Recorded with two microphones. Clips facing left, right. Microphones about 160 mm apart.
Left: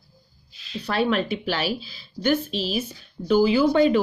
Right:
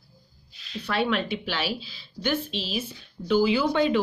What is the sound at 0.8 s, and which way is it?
A woman's voice, 40° left (ahead or behind).